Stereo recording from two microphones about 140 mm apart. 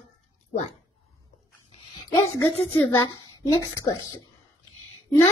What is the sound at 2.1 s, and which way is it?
Speech, 15° left (ahead or behind).